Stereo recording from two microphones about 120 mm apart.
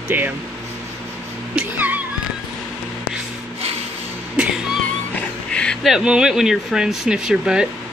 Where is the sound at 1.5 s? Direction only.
10° right (ahead or behind).